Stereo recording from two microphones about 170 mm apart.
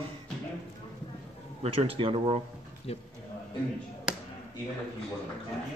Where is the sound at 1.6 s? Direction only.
35° right (ahead or behind).